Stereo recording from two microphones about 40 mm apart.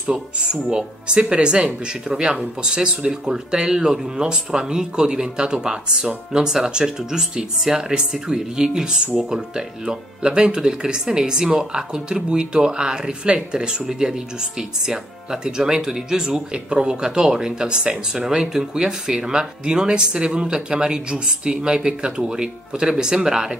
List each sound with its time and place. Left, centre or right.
0.0 s speech: right
15.4 s speech: centre